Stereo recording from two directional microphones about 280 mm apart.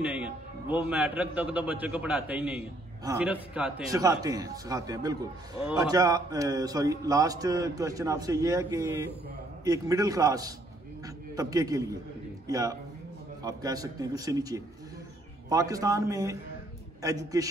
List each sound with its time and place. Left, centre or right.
0.0 s a man's voice: centre